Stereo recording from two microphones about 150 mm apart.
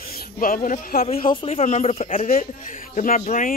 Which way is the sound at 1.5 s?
50° left (ahead or behind).